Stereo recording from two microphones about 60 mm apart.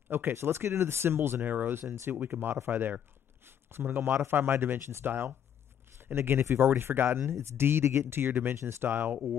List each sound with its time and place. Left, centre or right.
0.1 s speech: right
3.4 s a sound: right
4.2 s speech: right
8.5 s speech: right
8.8 s speech: right